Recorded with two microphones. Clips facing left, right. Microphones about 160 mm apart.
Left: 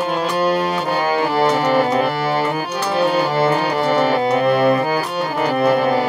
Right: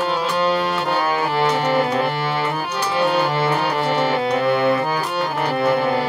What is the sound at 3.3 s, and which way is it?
Music, 40° left (ahead or behind).